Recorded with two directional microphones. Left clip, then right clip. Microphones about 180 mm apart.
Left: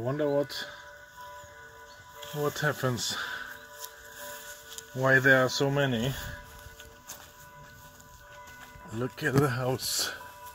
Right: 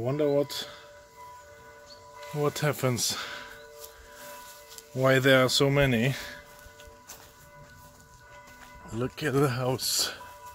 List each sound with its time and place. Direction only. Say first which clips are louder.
0.0 s speech: right 2 dB; 5° right (ahead or behind)
2.4 s speech: right 1 dB; 15° right (ahead or behind)
4.9 s speech: even; 20° right (ahead or behind)
5.7 s speech: right 4 dB; 40° right (ahead or behind)
8.8 s speech: even; centre (ahead or behind)